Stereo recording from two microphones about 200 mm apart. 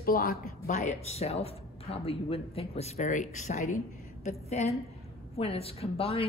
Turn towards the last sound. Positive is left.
turn(degrees=30)  # may be behind; listen again after turning